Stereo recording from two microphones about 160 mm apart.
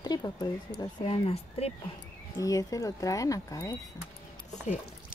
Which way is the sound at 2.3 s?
20° left (ahead or behind).